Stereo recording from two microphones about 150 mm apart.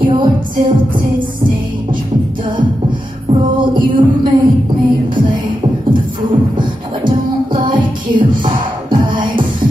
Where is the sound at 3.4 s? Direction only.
30° right (ahead or behind).